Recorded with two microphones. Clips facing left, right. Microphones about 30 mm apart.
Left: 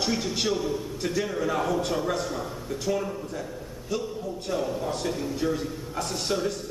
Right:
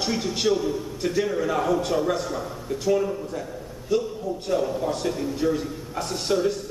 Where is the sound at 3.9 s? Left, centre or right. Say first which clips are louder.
Right 7 dB; centre.